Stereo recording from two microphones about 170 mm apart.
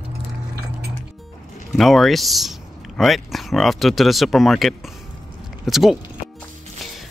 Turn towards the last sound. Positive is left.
turn(degrees=0)  # may be behind; listen again after turning